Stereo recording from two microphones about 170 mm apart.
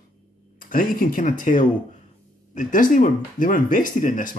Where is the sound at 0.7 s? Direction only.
55° left (ahead or behind).